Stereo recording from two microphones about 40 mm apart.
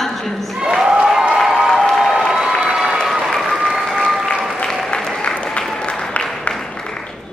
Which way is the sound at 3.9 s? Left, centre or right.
Centre.